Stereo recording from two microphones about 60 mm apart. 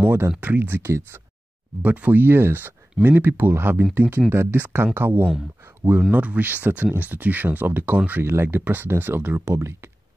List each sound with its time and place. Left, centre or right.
0.0 s a sound: right
0.4 s speech: right
1.8 s speech: right
9.5 s speech: right